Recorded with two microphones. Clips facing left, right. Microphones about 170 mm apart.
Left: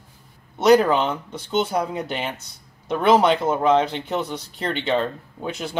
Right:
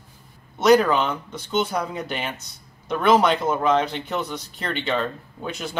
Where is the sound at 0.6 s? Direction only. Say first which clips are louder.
Left 1 dB; 25° left (ahead or behind).